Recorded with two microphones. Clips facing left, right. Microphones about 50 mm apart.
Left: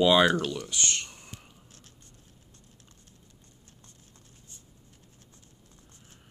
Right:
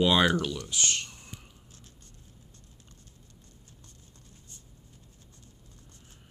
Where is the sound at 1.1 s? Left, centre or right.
Centre.